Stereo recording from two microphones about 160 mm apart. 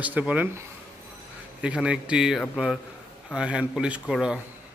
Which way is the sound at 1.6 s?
5° right (ahead or behind).